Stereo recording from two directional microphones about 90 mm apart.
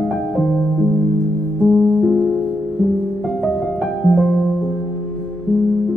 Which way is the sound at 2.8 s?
Centre (ahead or behind).